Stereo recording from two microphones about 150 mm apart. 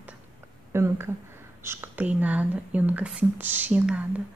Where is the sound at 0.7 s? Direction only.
15° right (ahead or behind).